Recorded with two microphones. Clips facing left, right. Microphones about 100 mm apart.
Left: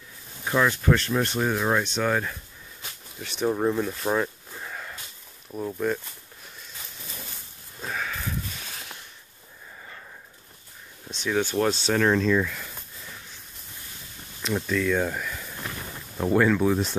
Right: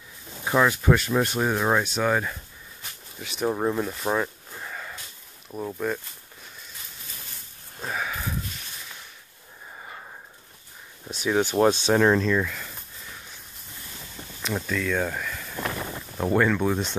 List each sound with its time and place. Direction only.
0.5 s speech: 10° right (ahead or behind)
7.8 s sniff: 10° right (ahead or behind)
9.8 s a sound: 30° right (ahead or behind)
11.1 s speech: 10° right (ahead or behind)
12.2 s speech: centre (ahead or behind)
14.4 s speech: centre (ahead or behind)